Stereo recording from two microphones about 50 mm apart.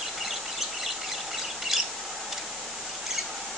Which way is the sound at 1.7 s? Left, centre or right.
Centre.